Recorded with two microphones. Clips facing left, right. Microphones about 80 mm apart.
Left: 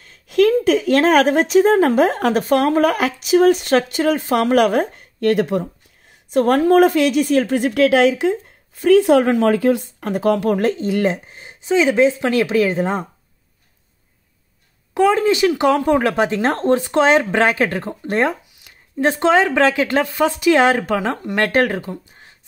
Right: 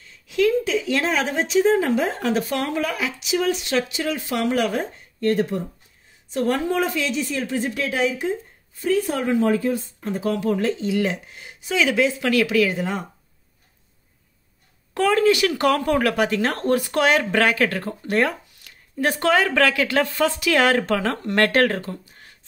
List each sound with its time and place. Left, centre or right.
0.0 s a woman's voice: left
6.3 s a woman's voice: left
11.2 s speech: left
15.0 s speech: left